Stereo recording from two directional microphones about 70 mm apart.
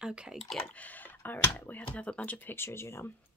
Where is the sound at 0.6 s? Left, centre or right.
Left.